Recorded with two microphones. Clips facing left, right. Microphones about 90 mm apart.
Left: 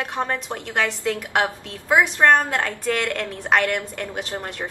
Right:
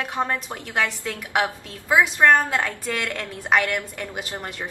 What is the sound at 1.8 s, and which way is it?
A woman's voice, 5° right (ahead or behind).